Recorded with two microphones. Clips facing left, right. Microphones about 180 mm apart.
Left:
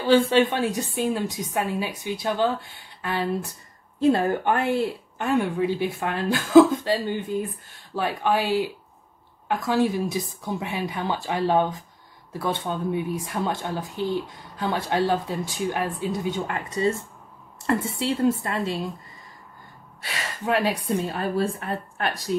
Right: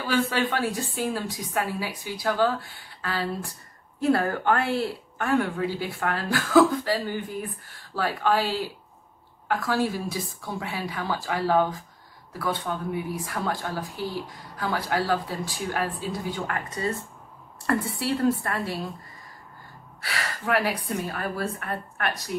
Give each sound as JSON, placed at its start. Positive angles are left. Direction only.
{"t": 0.0, "sound": "speech", "side_deg": 25}
{"t": 20.0, "sound": "speech", "side_deg": 20}